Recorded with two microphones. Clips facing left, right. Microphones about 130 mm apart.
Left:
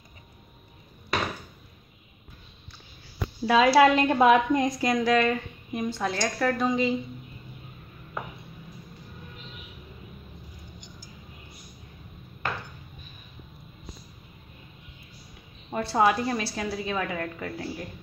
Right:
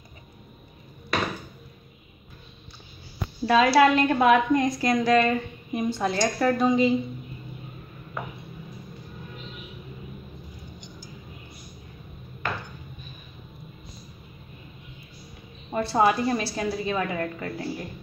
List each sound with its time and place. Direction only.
3.4 s a woman's voice: 10° left (ahead or behind)
4.9 s a woman's voice: 5° left (ahead or behind)
15.7 s a woman's voice: centre (ahead or behind)